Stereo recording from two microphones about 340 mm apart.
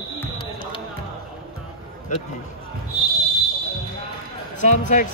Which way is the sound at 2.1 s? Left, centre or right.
Left.